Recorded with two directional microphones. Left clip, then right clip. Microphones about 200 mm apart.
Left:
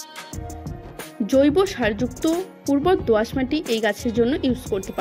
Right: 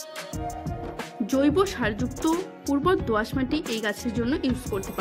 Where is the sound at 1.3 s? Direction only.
10° left (ahead or behind).